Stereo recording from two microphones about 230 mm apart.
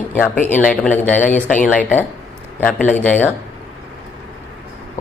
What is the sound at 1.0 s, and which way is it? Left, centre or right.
Speech, left.